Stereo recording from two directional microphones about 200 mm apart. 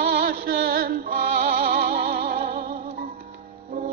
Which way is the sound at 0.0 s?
50° right (ahead or behind).